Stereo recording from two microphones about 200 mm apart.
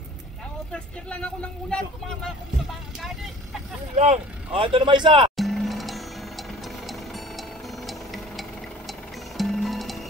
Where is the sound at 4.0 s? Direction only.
30° right (ahead or behind).